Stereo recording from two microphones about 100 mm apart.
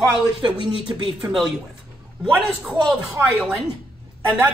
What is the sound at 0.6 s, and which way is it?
Speech, 65° left (ahead or behind).